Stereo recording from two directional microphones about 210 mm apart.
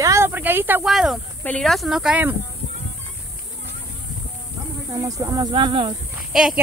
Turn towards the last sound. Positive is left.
turn(degrees=-5)  # may be behind; listen again after turning